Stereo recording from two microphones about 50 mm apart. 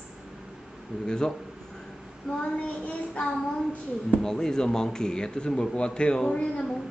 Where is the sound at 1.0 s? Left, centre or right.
Centre.